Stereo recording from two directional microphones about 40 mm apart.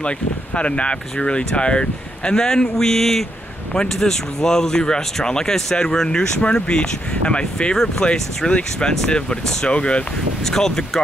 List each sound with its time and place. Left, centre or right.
0.6 s speech: left
7.7 s speech: centre
8.5 s speech: left
10.4 s speech: centre